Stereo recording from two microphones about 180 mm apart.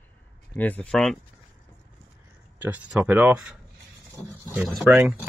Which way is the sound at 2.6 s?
5° right (ahead or behind).